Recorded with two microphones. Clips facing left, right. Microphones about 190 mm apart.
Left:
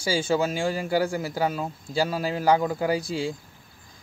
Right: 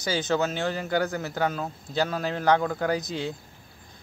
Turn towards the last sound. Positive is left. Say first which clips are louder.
# left 2 dB
turn(degrees=10)  # may be behind; listen again after turning